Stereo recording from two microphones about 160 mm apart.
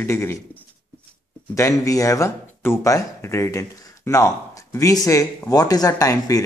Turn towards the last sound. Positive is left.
turn(degrees=20)  # may be behind; listen again after turning